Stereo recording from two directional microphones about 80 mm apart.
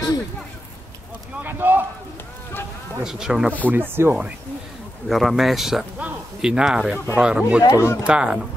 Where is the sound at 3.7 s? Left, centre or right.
Right.